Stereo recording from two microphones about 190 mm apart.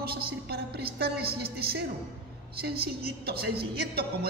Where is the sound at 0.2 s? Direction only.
55° right (ahead or behind).